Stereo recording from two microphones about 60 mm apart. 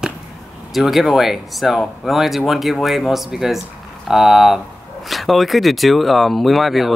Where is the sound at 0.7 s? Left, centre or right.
Centre.